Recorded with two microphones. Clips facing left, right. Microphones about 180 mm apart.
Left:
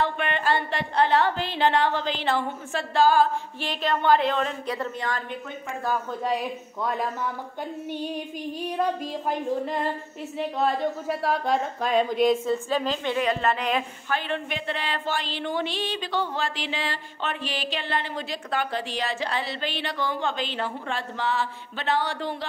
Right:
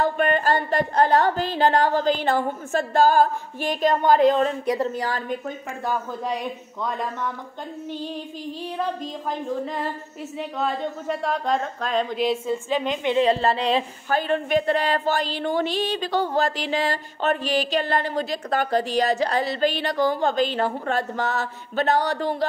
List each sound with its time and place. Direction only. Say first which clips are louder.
0.0 s a sound: right 5 dB; 45° right (ahead or behind)
4.7 s speech: right 4 dB; 35° right (ahead or behind)
6.2 s speech: left 1 dB; centre (ahead or behind)
8.7 s speech: left 2 dB; 10° left (ahead or behind)
13.0 s speech: right 5 dB; 25° right (ahead or behind); by 22.5 s 40° right (ahead or behind)